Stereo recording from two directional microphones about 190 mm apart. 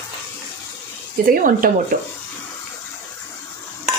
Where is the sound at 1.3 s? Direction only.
45° right (ahead or behind).